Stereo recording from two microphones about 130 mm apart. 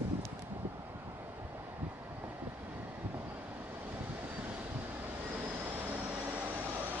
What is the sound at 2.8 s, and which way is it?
Vehicle, 15° right (ahead or behind).